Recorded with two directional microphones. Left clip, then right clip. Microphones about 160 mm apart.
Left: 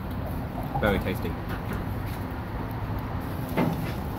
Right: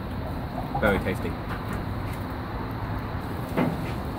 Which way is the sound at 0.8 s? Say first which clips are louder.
Right 2 dB; 10° left (ahead or behind).